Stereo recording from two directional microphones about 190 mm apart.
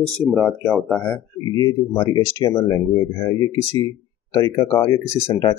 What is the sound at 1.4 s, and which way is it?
Speech, 20° left (ahead or behind).